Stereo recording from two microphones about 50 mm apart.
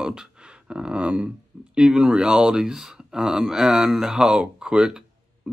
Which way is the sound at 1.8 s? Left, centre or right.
Centre.